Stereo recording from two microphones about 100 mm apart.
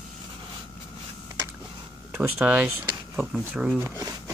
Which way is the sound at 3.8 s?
35° right (ahead or behind).